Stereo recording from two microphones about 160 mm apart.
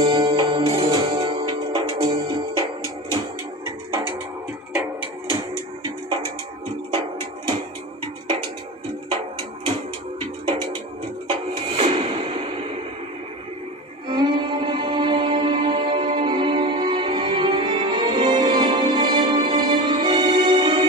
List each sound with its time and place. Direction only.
0.0 s music: 30° right (ahead or behind)
9.1 s music: 30° right (ahead or behind)
11.2 s music: 35° right (ahead or behind)
14.0 s music: 30° right (ahead or behind)